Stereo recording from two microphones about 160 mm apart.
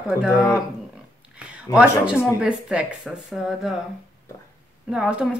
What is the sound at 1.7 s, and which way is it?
A woman's voice, 5° right (ahead or behind).